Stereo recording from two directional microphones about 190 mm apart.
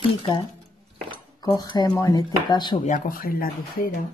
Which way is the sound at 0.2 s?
25° left (ahead or behind).